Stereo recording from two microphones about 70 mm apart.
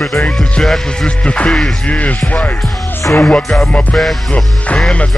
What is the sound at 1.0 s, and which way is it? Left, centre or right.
Music, centre.